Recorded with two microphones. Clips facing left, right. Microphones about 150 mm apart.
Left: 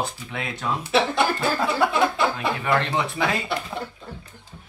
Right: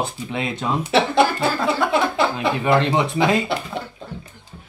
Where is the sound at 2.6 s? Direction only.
20° right (ahead or behind).